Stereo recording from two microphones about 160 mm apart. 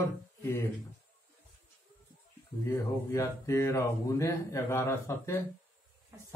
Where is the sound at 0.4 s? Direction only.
15° left (ahead or behind).